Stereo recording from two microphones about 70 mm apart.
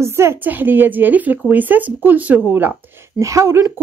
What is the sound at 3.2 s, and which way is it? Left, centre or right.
Speech, right.